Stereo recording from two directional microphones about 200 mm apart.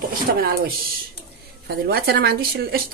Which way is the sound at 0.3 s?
50° right (ahead or behind).